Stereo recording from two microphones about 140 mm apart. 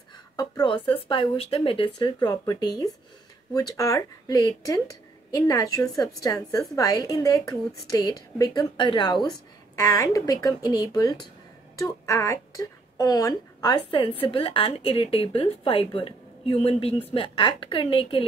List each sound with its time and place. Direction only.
0.4 s a woman's voice: 35° left (ahead or behind)